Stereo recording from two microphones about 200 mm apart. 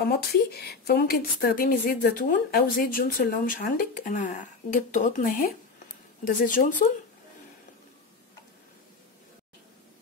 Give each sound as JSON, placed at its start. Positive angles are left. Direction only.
{"t": 0.3, "sound": "a woman's voice", "side_deg": 50}